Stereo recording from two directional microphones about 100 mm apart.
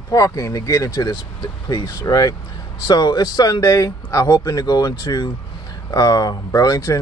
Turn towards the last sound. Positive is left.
turn(degrees=40)  # may be behind; listen again after turning